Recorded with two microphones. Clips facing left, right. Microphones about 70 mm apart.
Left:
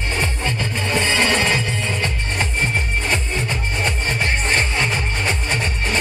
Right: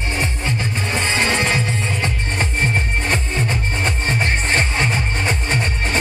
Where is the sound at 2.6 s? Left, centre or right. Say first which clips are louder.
Right 1 dB; right.